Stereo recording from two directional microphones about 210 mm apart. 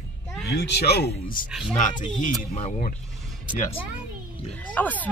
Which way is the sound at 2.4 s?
30° left (ahead or behind).